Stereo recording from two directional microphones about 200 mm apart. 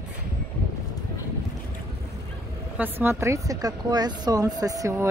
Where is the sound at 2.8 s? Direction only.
10° right (ahead or behind).